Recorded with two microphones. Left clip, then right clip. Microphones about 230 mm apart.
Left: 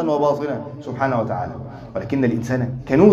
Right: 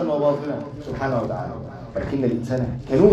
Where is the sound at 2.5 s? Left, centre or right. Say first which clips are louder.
Left 1 dB; left.